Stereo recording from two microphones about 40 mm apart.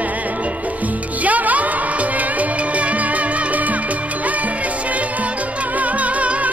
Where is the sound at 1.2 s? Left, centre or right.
Right.